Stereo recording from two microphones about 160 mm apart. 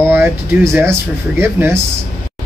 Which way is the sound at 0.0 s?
15° right (ahead or behind).